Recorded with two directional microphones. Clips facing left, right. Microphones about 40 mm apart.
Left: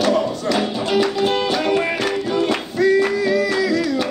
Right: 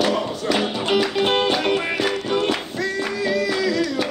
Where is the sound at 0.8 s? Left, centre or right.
Right.